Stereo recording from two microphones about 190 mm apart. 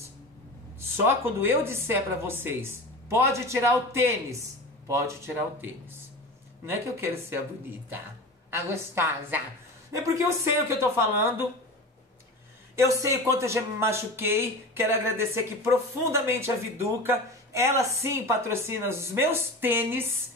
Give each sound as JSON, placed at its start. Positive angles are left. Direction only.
{"t": 0.7, "sound": "speech", "side_deg": -10}
{"t": 8.5, "sound": "speech", "side_deg": -15}
{"t": 12.7, "sound": "speech", "side_deg": -15}